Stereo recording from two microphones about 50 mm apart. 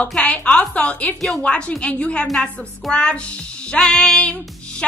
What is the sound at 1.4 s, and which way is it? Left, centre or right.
Speech, centre.